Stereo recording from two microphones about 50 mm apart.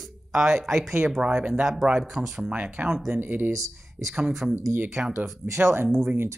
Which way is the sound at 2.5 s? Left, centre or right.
Right.